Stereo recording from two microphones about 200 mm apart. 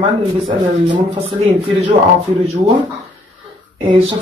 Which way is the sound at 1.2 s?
30° right (ahead or behind).